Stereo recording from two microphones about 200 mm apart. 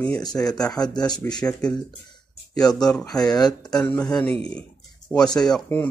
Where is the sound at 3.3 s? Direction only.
20° left (ahead or behind).